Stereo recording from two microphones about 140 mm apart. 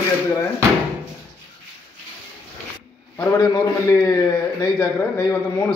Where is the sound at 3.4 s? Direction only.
20° left (ahead or behind).